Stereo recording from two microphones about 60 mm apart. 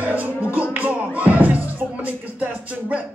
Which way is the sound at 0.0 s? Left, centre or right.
Right.